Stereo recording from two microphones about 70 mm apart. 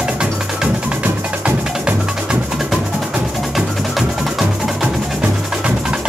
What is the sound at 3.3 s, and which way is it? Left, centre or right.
Wood block, centre.